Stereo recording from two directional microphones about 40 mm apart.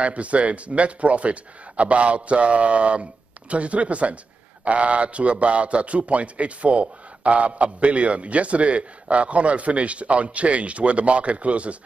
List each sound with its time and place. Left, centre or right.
0.0 s a man's voice: right